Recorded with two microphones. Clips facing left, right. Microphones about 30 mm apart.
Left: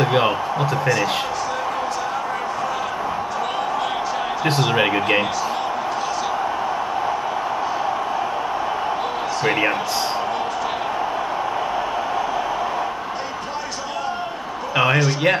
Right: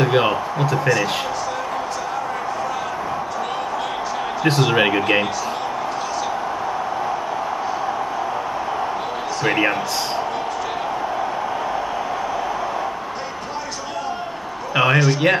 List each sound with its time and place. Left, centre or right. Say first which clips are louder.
0.0 s a man's voice: right 1 dB; centre
4.5 s a man's voice: right 2 dB; centre
9.4 s a man's voice: right 1 dB; centre
14.8 s a man's voice: right 2 dB; centre